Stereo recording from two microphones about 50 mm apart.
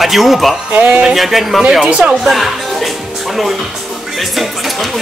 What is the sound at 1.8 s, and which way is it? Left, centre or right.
Speech, centre.